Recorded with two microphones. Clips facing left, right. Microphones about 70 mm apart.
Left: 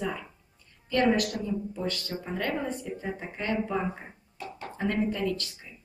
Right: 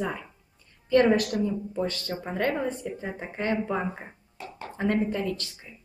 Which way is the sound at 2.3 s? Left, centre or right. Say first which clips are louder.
Right 4 dB; right.